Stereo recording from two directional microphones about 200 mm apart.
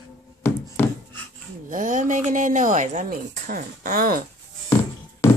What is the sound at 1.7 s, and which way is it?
A woman's voice, 40° right (ahead or behind).